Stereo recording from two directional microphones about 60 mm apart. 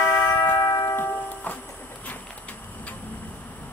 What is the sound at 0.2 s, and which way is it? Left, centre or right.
Tubular bells, left.